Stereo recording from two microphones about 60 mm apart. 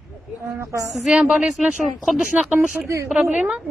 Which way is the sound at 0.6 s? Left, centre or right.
Right.